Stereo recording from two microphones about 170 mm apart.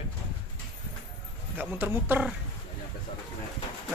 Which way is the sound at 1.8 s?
10° right (ahead or behind).